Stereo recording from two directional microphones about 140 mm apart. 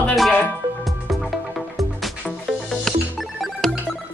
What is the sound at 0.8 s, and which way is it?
Music, centre (ahead or behind).